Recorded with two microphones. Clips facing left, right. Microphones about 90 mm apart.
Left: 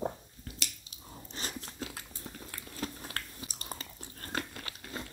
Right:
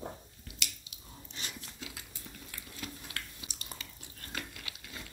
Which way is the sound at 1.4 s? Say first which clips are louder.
Left 5 dB; 40° left (ahead or behind).